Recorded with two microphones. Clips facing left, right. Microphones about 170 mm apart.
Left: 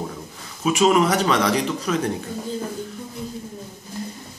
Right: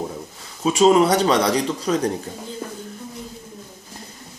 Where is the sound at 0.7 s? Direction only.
30° right (ahead or behind).